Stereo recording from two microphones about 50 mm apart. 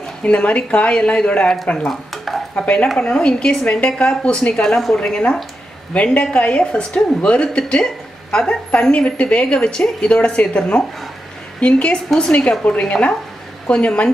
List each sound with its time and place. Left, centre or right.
0.2 s a woman's voice: left
1.9 s stir: centre
2.5 s a woman's voice: left
6.3 s a woman's voice: left